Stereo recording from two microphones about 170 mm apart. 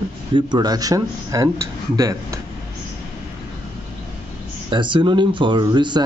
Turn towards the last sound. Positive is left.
turn(degrees=-25)  # may be behind; listen again after turning